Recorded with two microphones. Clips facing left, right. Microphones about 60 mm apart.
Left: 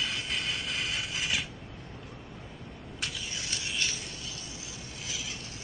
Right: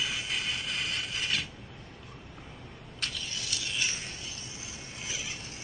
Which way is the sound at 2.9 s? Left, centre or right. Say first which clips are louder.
Even; centre.